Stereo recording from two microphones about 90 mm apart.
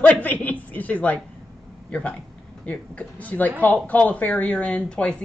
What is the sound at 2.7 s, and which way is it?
A woman's voice, 15° left (ahead or behind).